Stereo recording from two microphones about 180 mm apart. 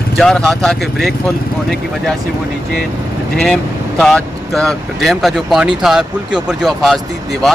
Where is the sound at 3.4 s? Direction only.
Centre (ahead or behind).